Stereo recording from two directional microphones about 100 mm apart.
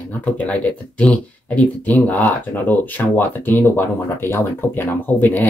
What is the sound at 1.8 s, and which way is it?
Speech, 15° left (ahead or behind).